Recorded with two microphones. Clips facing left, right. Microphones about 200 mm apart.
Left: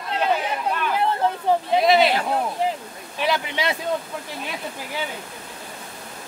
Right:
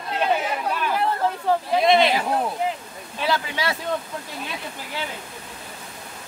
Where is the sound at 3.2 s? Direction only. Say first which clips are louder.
Left 1 dB; 20° left (ahead or behind).